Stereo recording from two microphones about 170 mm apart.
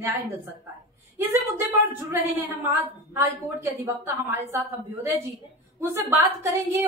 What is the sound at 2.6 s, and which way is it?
A woman's voice, 15° right (ahead or behind).